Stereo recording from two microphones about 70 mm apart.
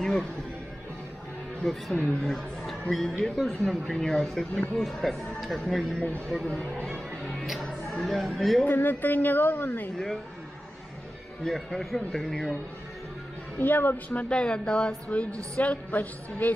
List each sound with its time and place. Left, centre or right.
0.0 s music: centre
1.6 s a woman's voice: centre
7.8 s speech: centre
8.6 s speech: left
11.4 s speech: centre
13.6 s a woman's voice: left